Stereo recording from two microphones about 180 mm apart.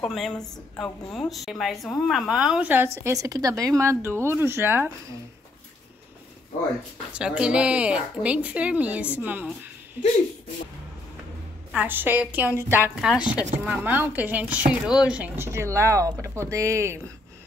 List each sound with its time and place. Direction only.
0.0 s a woman's voice: centre (ahead or behind)
7.2 s a woman's voice: 5° right (ahead or behind)
11.7 s a woman's voice: 10° right (ahead or behind)